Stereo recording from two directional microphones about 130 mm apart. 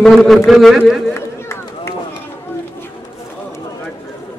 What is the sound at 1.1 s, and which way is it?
Run, 20° left (ahead or behind).